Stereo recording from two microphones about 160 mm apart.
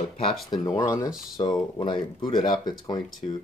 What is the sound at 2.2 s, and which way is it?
Speech, 25° left (ahead or behind).